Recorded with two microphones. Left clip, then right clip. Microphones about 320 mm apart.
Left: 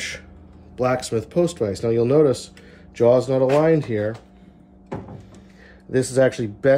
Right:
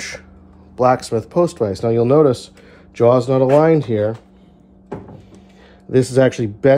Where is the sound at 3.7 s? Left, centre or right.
Centre.